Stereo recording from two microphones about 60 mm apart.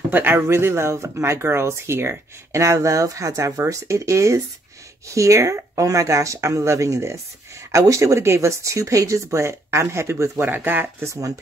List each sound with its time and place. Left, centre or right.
0.1 s speech: right
2.6 s speech: right
10.4 s speech: right
11.1 s speech: right